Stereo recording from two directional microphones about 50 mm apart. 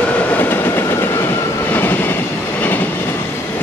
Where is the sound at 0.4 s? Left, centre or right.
Left.